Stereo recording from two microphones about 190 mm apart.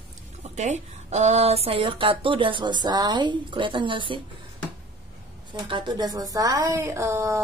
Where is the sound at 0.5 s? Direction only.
35° right (ahead or behind).